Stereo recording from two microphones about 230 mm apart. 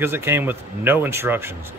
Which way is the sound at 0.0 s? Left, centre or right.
Centre.